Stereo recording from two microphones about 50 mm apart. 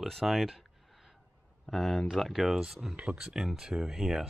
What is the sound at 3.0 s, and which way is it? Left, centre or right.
Speech, right.